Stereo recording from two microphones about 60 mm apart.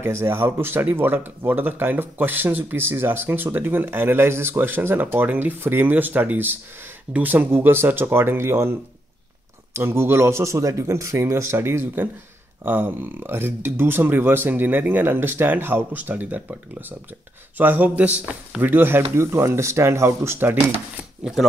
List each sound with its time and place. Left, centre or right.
0.0 s speech: right
9.8 s speech: right
17.6 s speech: right
20.3 s speech: right
21.2 s speech: centre